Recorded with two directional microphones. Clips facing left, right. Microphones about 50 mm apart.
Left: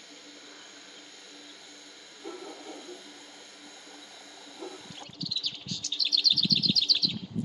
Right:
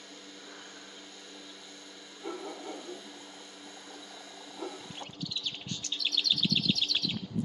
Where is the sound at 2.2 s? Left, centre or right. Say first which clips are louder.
Right 2 dB; right.